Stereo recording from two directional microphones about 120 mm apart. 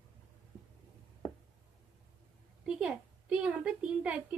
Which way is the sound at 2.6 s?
5° right (ahead or behind).